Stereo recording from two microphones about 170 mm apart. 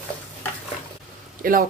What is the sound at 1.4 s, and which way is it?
Speech, 55° right (ahead or behind).